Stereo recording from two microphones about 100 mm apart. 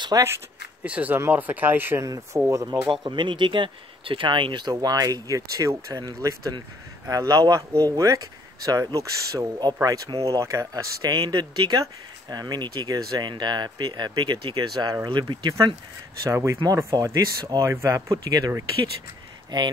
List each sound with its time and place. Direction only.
0.1 s speech: 35° right (ahead or behind)
0.8 s speech: 15° right (ahead or behind)
2.0 s speech: 35° right (ahead or behind)
2.6 s speech: 50° right (ahead or behind)
16.3 s speech: 30° right (ahead or behind)
19.5 s speech: 50° right (ahead or behind)